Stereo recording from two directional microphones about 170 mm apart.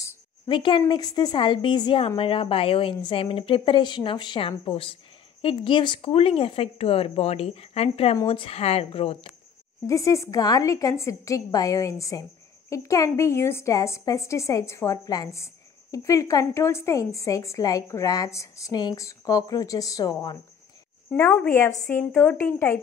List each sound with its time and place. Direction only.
0.5 s a woman's voice: 30° left (ahead or behind)
9.8 s a woman's voice: 20° left (ahead or behind)
21.1 s a woman's voice: 10° left (ahead or behind)